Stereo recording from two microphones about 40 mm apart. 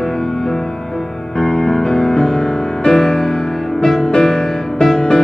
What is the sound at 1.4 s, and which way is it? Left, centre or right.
Music, centre.